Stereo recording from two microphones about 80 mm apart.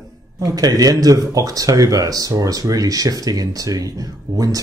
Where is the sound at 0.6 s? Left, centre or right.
Right.